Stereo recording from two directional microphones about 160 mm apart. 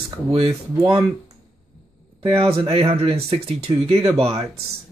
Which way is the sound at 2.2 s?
35° right (ahead or behind).